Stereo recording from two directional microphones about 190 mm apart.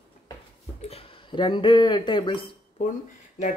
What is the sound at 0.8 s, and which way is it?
Speech, 30° left (ahead or behind).